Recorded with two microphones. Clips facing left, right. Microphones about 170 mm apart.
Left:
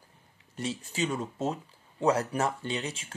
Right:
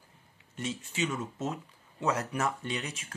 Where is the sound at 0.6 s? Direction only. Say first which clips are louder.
Left 2 dB; 35° left (ahead or behind).